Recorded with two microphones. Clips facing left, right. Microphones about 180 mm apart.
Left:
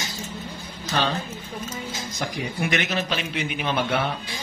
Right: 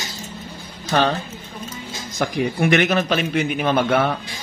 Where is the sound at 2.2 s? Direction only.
60° right (ahead or behind).